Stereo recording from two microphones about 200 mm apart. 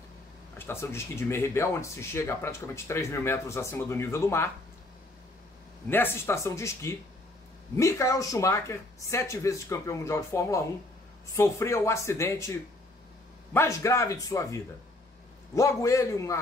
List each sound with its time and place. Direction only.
0.6 s speech: 10° left (ahead or behind)
5.9 s speech: 10° left (ahead or behind)